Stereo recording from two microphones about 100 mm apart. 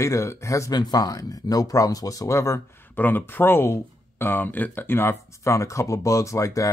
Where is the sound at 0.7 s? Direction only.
45° left (ahead or behind).